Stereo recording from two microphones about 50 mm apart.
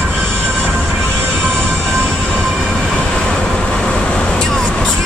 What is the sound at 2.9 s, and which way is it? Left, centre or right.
Vehicle, centre.